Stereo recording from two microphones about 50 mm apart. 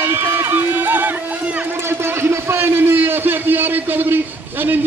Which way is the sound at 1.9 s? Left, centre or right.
Right.